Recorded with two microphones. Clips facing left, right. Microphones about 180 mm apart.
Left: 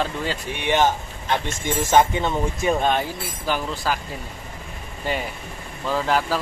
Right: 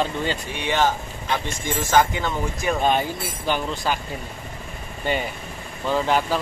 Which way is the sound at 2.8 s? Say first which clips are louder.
Right 1 dB; centre (ahead or behind).